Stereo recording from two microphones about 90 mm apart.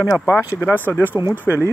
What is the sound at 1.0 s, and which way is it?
Speech, 20° right (ahead or behind).